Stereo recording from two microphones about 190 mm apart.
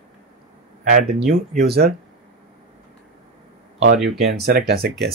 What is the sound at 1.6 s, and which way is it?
Speech, 55° right (ahead or behind).